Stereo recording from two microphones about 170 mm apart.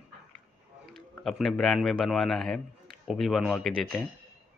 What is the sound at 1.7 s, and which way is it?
A man's voice, centre (ahead or behind).